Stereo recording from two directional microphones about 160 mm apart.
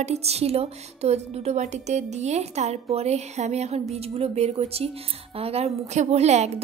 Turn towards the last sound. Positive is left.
turn(degrees=-45)  # may be behind; listen again after turning